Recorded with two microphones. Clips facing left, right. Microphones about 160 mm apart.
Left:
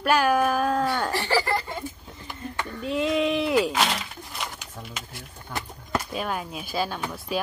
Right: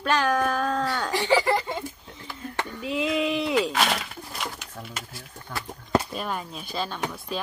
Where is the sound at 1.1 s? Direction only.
20° right (ahead or behind).